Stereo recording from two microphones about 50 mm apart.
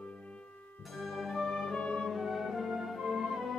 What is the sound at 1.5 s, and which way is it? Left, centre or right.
Music, centre.